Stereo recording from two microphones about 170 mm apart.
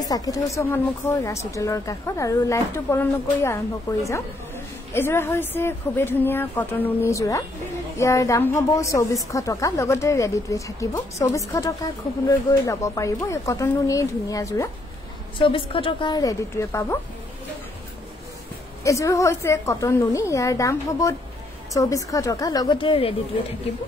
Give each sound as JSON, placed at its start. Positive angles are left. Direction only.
{"t": 0.0, "sound": "a woman's voice", "side_deg": 20}
{"t": 15.3, "sound": "a woman's voice", "side_deg": 30}
{"t": 18.9, "sound": "a woman's voice", "side_deg": 20}